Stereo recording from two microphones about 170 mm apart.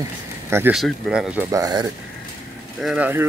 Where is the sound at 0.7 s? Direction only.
Centre (ahead or behind).